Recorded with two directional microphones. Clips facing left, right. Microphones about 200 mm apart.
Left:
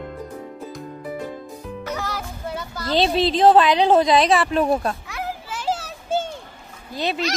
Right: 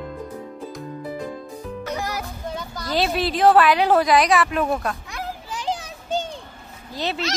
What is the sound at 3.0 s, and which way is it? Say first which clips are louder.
Speech: left 2 dB; 25° left (ahead or behind).